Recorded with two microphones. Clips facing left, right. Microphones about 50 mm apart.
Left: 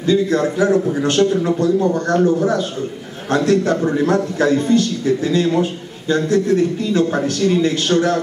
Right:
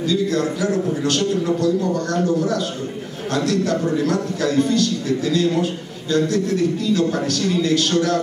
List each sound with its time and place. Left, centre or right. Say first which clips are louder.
0.0 s a man's voice: left 4 dB; left